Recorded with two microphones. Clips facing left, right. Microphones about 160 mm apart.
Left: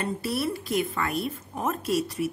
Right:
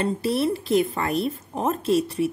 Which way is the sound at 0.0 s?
30° right (ahead or behind).